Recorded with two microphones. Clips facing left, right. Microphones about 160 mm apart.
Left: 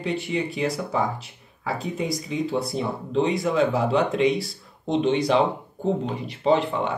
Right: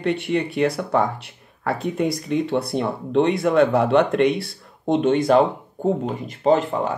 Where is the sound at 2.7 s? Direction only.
70° right (ahead or behind).